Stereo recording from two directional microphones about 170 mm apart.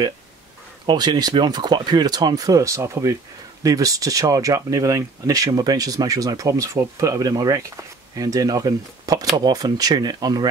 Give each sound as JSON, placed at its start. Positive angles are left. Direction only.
{"t": 0.8, "sound": "speech", "side_deg": -25}